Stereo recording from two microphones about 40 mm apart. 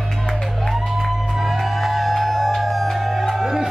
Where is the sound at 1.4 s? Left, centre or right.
Centre.